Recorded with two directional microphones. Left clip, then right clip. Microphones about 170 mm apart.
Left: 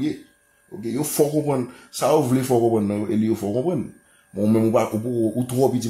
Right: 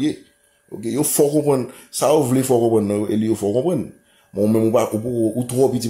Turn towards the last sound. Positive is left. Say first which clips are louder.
# right 3 dB
turn(degrees=-10)  # may be behind; listen again after turning